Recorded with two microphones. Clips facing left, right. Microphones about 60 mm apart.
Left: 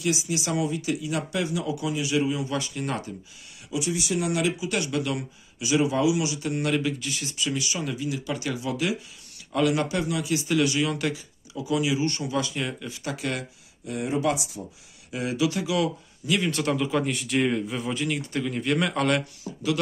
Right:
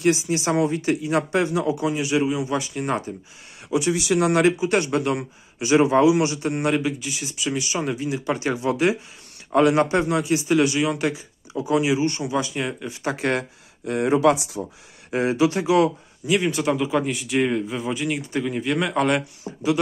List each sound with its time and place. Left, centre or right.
0.0 s speech: right
3.7 s speech: right
4.3 s speech: right
6.5 s speech: right
6.9 s a man's voice: centre
7.7 s speech: right
11.5 s speech: right
13.0 s speech: right
15.0 s speech: right
16.3 s a man's voice: centre
19.4 s speech: right